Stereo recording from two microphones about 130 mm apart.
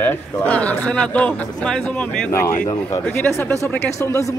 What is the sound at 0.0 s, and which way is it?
Speech, 15° left (ahead or behind).